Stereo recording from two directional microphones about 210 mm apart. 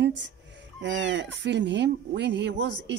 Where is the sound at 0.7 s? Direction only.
60° right (ahead or behind).